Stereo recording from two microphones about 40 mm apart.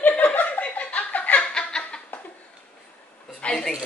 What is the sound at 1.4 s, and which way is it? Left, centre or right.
Snicker, left.